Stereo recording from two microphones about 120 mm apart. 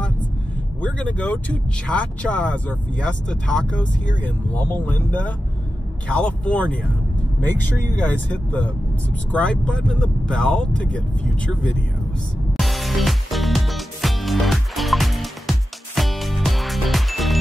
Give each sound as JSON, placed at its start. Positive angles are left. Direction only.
{"t": 0.7, "sound": "speech", "side_deg": 10}
{"t": 8.0, "sound": "speech", "side_deg": 10}
{"t": 12.5, "sound": "music", "side_deg": 0}